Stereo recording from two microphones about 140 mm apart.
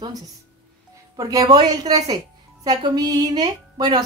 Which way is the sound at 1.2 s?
25° right (ahead or behind).